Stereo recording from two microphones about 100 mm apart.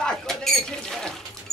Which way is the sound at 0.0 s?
5° left (ahead or behind).